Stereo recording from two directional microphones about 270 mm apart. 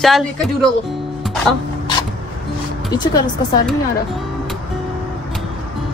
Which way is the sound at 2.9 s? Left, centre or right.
Centre.